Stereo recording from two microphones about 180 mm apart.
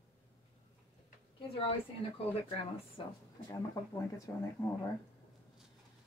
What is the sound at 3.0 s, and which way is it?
Speech, 30° left (ahead or behind).